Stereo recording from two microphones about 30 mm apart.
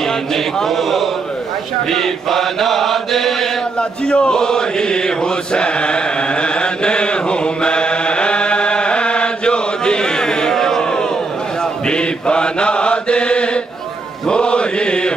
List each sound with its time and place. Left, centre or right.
0.0 s mantra: centre
4.0 s chant: left
4.4 s chant: left
10.8 s crowd: left
11.9 s mantra: left